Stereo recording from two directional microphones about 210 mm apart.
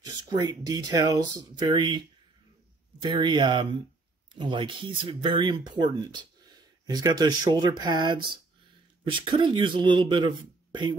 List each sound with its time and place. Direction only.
0.0 s speech: 20° right (ahead or behind)